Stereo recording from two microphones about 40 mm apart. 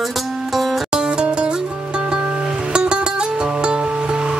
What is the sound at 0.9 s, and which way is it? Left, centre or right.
Music, right.